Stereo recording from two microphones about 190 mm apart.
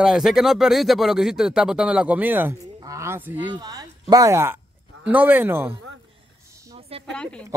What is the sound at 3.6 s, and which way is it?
A woman's voice, 20° right (ahead or behind).